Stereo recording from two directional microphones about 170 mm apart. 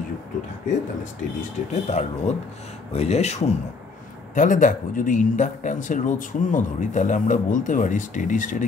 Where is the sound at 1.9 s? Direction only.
40° left (ahead or behind).